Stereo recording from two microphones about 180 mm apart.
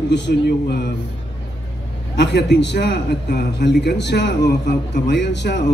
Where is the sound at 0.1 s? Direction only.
70° left (ahead or behind).